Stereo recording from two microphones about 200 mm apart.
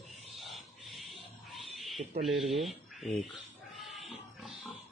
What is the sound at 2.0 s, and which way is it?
Speech, 30° right (ahead or behind).